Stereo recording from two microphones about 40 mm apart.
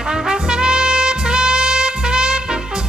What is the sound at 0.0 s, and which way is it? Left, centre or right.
Trumpet, centre.